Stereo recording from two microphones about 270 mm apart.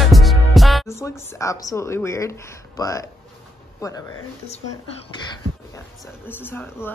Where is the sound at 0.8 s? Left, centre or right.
Centre.